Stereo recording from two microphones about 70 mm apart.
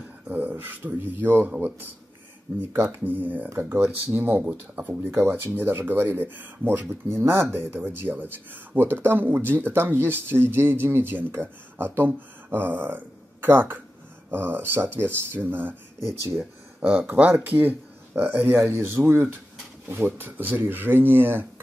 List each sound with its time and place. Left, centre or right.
0.3 s speech: right
5.2 s speech: right